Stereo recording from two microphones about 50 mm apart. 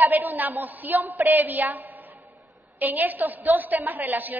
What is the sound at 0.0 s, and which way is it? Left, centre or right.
A woman's voice, right.